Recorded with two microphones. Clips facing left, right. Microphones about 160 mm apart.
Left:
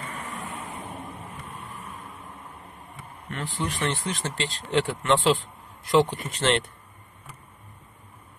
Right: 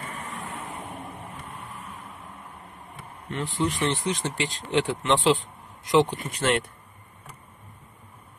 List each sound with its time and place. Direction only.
3.3 s speech: 20° right (ahead or behind)